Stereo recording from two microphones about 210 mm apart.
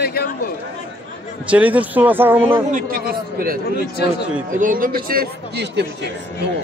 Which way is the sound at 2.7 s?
40° right (ahead or behind).